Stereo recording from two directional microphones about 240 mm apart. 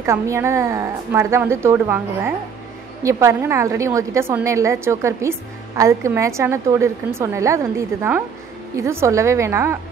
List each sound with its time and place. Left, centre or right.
0.0 s a woman's voice: centre